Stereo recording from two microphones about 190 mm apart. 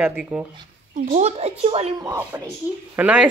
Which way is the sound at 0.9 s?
40° right (ahead or behind).